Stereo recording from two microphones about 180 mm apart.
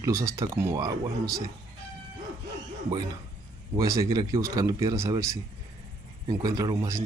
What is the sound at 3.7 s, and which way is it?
Speech, 20° right (ahead or behind).